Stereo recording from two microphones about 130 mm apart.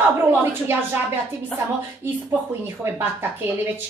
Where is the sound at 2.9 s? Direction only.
15° right (ahead or behind).